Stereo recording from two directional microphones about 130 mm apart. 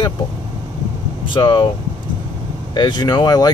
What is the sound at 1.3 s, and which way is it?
Speech, 40° left (ahead or behind).